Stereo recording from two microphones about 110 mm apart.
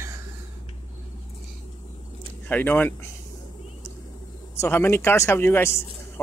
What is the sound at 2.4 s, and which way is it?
Speech, 15° left (ahead or behind).